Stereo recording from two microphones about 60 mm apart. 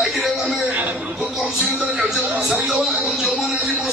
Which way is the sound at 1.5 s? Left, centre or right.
Centre.